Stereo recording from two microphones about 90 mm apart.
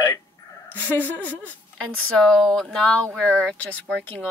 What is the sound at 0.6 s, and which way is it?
Speech, 20° left (ahead or behind).